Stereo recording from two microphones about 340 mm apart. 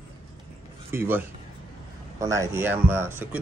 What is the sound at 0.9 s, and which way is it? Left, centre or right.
A man's voice, centre.